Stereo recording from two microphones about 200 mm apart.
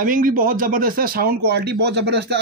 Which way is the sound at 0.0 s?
45° right (ahead or behind).